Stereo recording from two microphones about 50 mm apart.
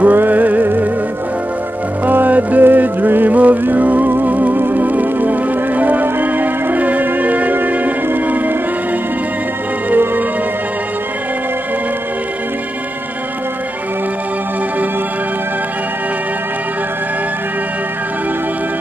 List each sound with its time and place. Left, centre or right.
0.0 s music: right
2.0 s music: right
9.8 s music: right